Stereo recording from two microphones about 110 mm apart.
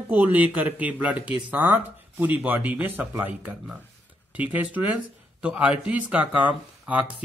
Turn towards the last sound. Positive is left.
turn(degrees=-15)  # may be behind; listen again after turning